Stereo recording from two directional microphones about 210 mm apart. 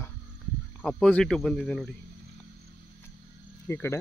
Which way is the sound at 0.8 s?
5° left (ahead or behind).